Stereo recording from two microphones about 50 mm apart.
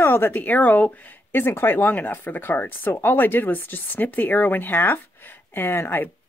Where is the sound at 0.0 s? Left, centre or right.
Left.